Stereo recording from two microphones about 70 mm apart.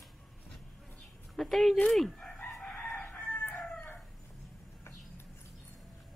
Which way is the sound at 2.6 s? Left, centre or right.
Centre.